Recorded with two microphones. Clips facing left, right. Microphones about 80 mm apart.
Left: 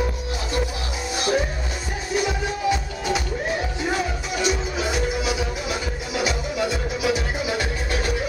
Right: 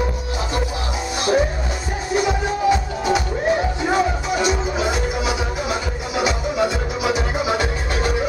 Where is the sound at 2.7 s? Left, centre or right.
Right.